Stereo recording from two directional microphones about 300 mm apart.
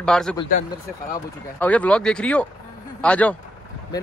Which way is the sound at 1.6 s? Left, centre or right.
Centre.